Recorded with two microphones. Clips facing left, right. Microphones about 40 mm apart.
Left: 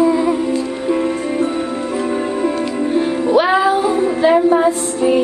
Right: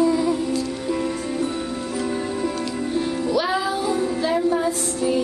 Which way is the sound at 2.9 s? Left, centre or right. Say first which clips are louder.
Left 8 dB; left.